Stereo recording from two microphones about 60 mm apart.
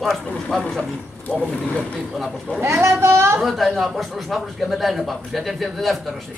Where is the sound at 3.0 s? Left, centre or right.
Right.